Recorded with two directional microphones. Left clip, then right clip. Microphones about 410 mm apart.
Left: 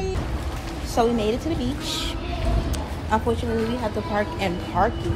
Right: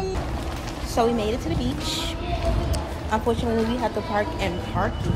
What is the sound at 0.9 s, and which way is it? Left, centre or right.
Speech, centre.